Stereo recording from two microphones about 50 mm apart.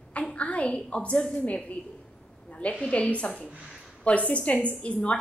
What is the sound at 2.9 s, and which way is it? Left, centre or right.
A woman's voice, left.